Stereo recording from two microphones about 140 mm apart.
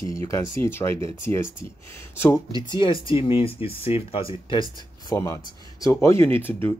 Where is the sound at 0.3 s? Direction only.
20° left (ahead or behind).